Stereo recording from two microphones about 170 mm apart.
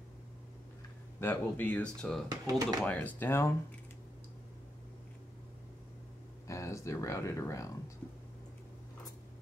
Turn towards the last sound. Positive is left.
turn(degrees=20)  # may be behind; listen again after turning